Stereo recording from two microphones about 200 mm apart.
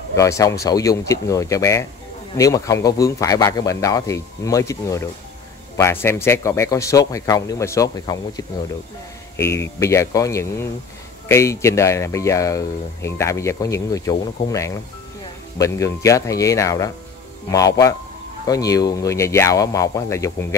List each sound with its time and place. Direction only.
0.1 s speech: 15° left (ahead or behind)